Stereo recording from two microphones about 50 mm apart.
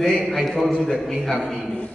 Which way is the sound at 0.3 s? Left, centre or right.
Centre.